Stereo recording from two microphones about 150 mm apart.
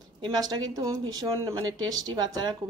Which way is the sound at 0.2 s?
25° right (ahead or behind).